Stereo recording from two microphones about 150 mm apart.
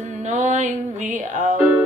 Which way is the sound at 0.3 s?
55° right (ahead or behind).